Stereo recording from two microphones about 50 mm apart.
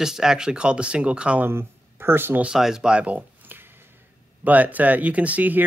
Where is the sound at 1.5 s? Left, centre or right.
Right.